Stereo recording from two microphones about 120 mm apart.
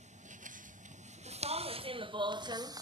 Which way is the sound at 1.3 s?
60° right (ahead or behind).